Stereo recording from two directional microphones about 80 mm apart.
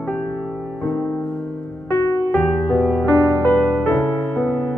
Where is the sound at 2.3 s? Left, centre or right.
Left.